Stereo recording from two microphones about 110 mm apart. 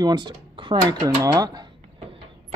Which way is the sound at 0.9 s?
30° right (ahead or behind).